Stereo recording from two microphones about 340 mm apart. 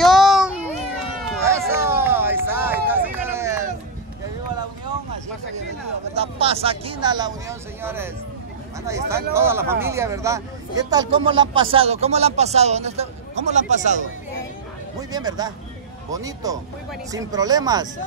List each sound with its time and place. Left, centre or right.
0.0 s a sound: centre
3.1 s run: centre
6.1 s speech: centre